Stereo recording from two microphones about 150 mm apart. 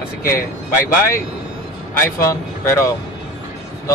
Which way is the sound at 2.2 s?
20° left (ahead or behind).